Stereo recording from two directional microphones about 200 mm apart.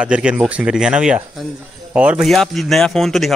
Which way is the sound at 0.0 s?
5° right (ahead or behind).